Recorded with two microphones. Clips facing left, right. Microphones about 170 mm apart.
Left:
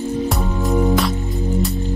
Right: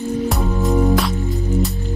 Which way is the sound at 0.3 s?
Centre (ahead or behind).